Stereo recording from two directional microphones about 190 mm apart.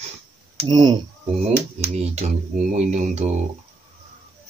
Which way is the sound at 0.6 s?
20° right (ahead or behind).